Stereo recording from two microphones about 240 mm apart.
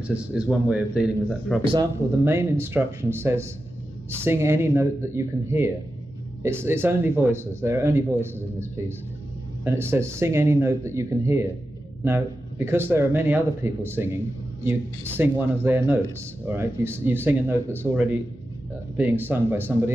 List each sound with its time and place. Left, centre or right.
0.0 s speech: centre
1.6 s speech: right
2.2 s speech: centre